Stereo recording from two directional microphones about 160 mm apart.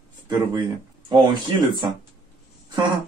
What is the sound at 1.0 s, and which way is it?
Speech, 30° right (ahead or behind).